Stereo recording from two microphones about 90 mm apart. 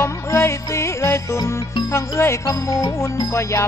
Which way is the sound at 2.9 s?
35° left (ahead or behind).